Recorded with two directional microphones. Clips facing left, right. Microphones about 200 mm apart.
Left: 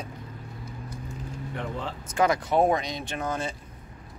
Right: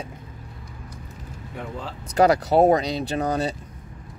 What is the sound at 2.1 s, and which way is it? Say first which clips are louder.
Speech: right 6 dB; 35° right (ahead or behind).